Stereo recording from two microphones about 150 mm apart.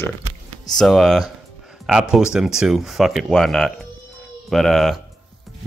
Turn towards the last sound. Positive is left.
turn(degrees=0)  # may be behind; listen again after turning